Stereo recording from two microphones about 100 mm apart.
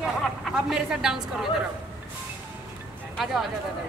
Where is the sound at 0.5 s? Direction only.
5° right (ahead or behind).